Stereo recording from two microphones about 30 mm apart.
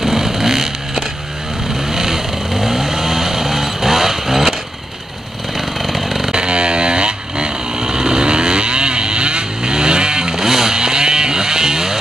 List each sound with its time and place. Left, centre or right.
0.0 s vehicle: centre
5.8 s chainsaw: centre
6.3 s vehicle: right
10.3 s music: centre
10.8 s vehicle: right